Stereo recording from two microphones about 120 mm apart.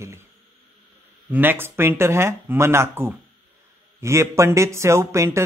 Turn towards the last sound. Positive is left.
turn(degrees=-25)  # may be behind; listen again after turning